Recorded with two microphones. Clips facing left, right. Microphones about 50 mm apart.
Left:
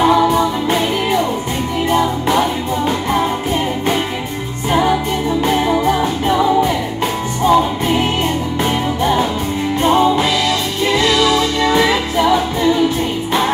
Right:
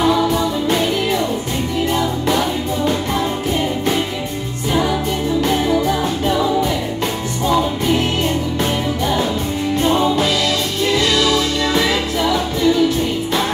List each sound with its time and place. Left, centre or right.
0.0 s music: left
5.4 s music: centre
9.8 s music: left